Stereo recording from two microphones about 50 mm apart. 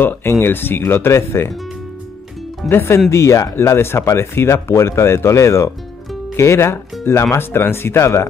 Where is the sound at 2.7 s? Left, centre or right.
Left.